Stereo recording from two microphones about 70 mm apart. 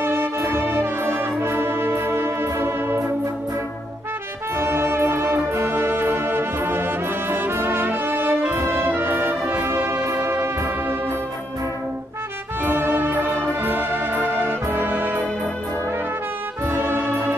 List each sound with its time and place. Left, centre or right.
0.0 s music: right
4.6 s music: right
12.6 s music: right
16.6 s music: right